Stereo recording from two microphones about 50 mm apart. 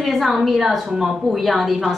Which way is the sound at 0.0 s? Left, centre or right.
Centre.